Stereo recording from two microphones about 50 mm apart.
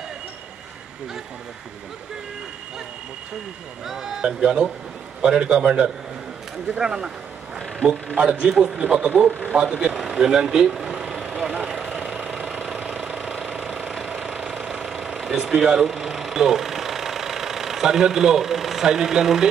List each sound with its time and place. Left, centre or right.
3.8 s speech: centre
4.3 s a man's voice: centre
8.2 s a man's voice: centre
9.3 s speech: right
9.6 s a man's voice: centre
9.9 s vehicle: centre
12.9 s engine: centre